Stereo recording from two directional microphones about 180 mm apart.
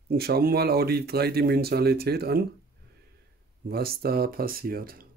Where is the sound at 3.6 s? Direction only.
60° right (ahead or behind).